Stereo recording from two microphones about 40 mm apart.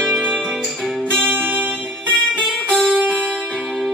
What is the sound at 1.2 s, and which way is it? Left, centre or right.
Music, right.